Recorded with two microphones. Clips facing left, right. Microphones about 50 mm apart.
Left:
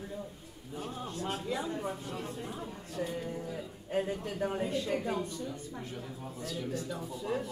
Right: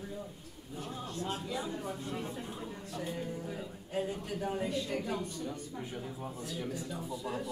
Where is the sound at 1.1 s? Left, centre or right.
Left.